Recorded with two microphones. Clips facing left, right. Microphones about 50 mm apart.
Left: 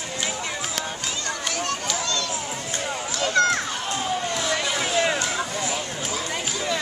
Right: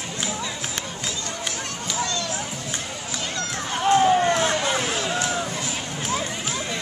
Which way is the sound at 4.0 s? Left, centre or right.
Right.